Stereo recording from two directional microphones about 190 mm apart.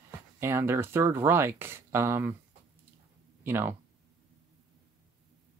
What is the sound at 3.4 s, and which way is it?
Speech, 10° right (ahead or behind).